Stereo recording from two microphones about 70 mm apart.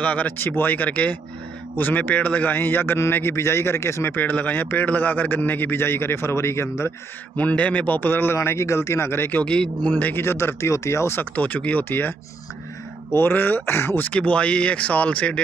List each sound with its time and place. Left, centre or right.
0.0 s a man's voice: centre; by 6.9 s left
7.3 s a man's voice: centre
9.4 s speech: centre
9.8 s a man's voice: left
10.2 s a man's voice: left
11.3 s a man's voice: centre
14.0 s speech: centre